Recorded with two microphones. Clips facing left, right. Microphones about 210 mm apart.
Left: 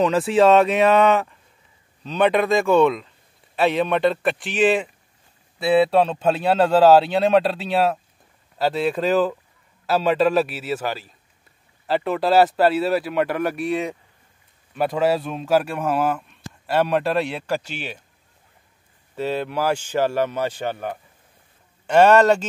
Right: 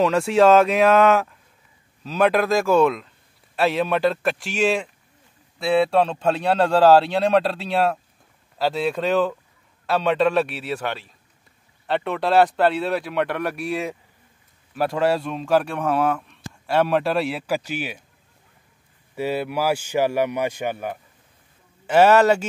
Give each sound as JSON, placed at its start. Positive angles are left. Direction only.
{"t": 0.0, "sound": "a man's voice", "side_deg": 0}
{"t": 19.1, "sound": "a man's voice", "side_deg": -10}